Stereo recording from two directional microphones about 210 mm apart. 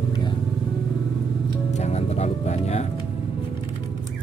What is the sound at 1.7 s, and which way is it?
Speech, 30° left (ahead or behind).